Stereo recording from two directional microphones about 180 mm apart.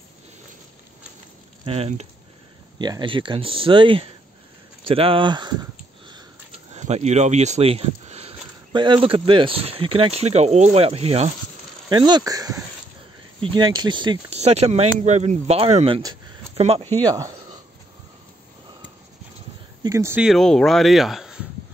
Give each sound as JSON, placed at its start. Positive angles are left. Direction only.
{"t": 1.6, "sound": "speech", "side_deg": -35}
{"t": 2.8, "sound": "speech", "side_deg": -25}
{"t": 4.8, "sound": "a sound", "side_deg": -30}
{"t": 6.7, "sound": "speech", "side_deg": -35}
{"t": 11.9, "sound": "speech", "side_deg": -25}
{"t": 14.4, "sound": "speech", "side_deg": -35}
{"t": 17.0, "sound": "speech", "side_deg": -20}
{"t": 19.8, "sound": "speech", "side_deg": -15}
{"t": 20.2, "sound": "speech", "side_deg": 0}